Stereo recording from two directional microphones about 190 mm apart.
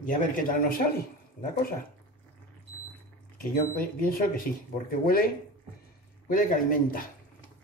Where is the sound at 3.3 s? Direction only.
50° left (ahead or behind).